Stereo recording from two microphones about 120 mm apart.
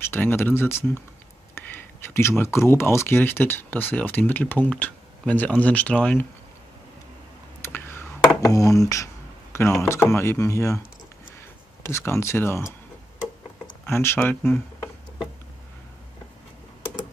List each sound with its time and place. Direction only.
0.0 s speech: 20° left (ahead or behind)
7.6 s a sound: 20° left (ahead or behind)
8.5 s speech: 25° left (ahead or behind)
11.8 s speech: 20° left (ahead or behind)
13.8 s speech: 20° left (ahead or behind)